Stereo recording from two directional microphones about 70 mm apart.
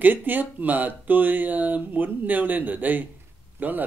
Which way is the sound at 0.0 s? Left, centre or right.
Right.